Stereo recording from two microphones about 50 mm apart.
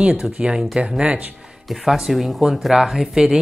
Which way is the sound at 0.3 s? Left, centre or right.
Centre.